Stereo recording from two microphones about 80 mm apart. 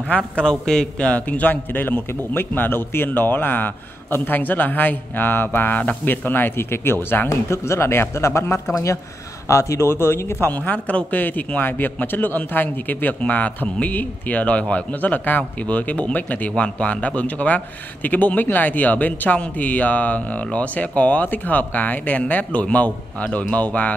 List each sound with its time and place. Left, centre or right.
0.4 s a man's voice: centre